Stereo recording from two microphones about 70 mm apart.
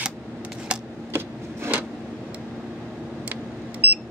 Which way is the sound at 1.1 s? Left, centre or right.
Right.